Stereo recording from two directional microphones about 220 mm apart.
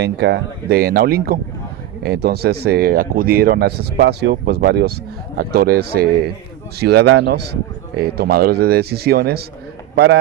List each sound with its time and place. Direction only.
0.0 s speech: 50° right (ahead or behind)